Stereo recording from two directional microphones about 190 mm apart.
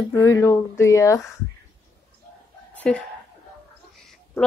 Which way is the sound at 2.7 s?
5° left (ahead or behind).